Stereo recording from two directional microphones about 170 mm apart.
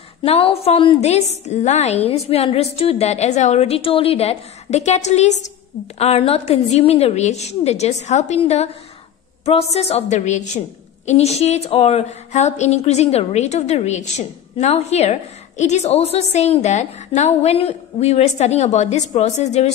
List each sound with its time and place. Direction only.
0.2 s a woman's voice: 35° left (ahead or behind)